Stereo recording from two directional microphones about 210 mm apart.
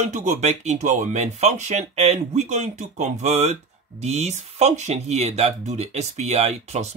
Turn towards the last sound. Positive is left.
turn(degrees=-30)  # may be behind; listen again after turning